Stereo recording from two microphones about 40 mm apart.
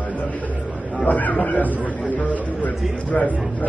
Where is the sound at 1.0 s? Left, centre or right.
Left.